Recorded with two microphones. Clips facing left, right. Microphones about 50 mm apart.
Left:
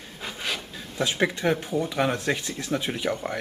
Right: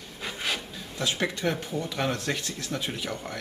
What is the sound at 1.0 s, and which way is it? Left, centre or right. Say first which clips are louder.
Speech: left 4 dB; centre.